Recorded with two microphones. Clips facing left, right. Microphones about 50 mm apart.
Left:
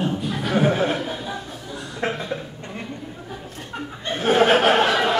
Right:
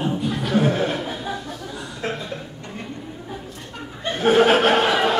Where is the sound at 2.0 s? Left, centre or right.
Left.